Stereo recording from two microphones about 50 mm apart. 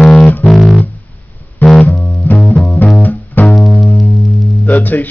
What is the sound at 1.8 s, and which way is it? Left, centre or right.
Music, left.